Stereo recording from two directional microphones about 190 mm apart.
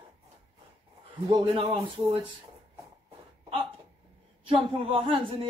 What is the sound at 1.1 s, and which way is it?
Speech, 25° right (ahead or behind).